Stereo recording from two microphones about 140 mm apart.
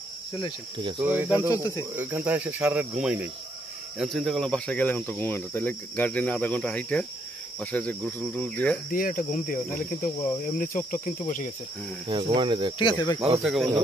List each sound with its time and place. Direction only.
0.7 s speech: 35° right (ahead or behind)
1.0 s cricket: 10° right (ahead or behind)
4.0 s speech: centre (ahead or behind)
8.9 s cricket: 80° left
12.1 s speech: 40° right (ahead or behind)
12.7 s speech: 30° left (ahead or behind)
13.4 s speech: centre (ahead or behind)